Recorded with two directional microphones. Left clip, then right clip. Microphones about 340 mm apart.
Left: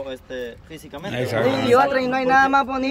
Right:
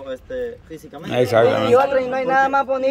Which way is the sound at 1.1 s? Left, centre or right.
Centre.